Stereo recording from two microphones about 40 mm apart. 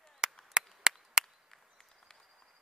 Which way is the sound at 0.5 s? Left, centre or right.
Centre.